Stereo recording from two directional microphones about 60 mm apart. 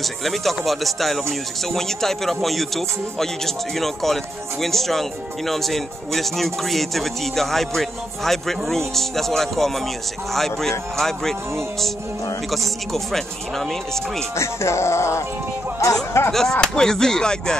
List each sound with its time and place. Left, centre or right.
0.0 s speech: centre
12.4 s speech: centre
14.3 s music: left
15.8 s speech: left
16.3 s speech: centre